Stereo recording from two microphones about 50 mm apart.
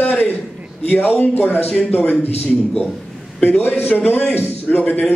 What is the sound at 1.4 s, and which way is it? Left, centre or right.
Speech, left.